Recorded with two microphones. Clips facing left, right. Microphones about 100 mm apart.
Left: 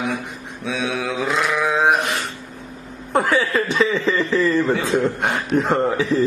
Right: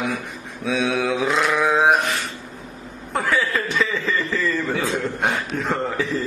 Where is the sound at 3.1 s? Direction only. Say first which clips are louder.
Left 3 dB; 20° left (ahead or behind).